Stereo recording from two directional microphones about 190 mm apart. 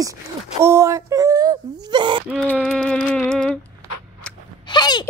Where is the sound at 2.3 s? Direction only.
5° left (ahead or behind).